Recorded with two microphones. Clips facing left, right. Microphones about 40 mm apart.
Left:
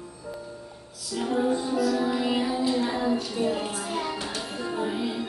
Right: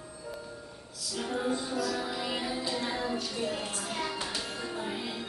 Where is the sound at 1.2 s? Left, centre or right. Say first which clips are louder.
Left 7 dB; centre.